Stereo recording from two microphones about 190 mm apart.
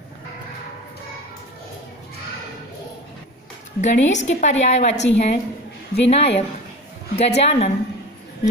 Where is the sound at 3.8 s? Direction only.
40° left (ahead or behind).